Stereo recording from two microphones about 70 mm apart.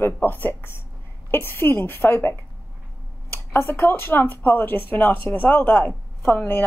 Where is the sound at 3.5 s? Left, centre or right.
Left.